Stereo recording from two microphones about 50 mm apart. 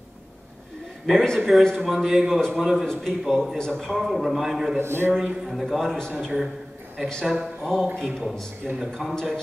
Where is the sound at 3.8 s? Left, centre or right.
Centre.